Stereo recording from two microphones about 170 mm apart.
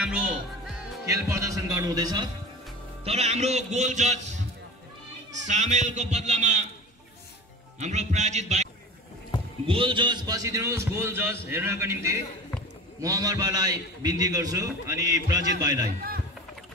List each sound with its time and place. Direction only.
0.0 s music: 5° right (ahead or behind)
1.0 s a man's voice: 20° right (ahead or behind)
3.0 s a man's voice: 40° right (ahead or behind)
5.5 s a man's voice: 45° right (ahead or behind)
7.8 s speech: 40° right (ahead or behind)
9.7 s a man's voice: 30° right (ahead or behind)